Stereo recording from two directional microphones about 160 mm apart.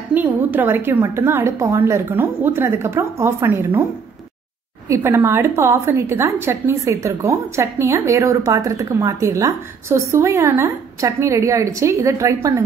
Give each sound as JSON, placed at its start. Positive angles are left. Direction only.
{"t": 0.1, "sound": "a woman's voice", "side_deg": -10}
{"t": 4.8, "sound": "a woman's voice", "side_deg": -15}